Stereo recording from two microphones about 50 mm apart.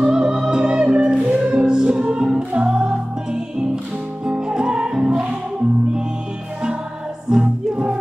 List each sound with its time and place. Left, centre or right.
0.0 s music: centre
7.2 s music: centre